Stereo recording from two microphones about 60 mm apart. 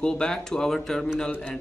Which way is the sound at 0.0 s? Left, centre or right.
Centre.